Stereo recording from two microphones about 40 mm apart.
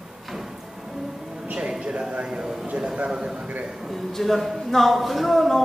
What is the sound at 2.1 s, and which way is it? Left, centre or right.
Speech, right.